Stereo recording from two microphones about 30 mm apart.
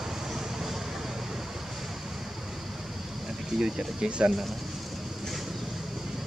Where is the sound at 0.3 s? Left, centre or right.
Centre.